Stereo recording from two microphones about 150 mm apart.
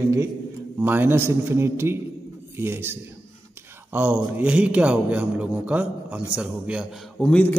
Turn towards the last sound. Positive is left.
turn(degrees=10)  # may be behind; listen again after turning